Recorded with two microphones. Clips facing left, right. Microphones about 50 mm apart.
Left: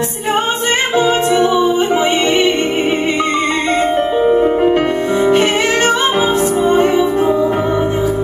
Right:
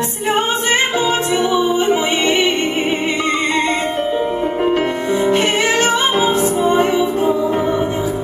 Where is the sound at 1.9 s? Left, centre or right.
Centre.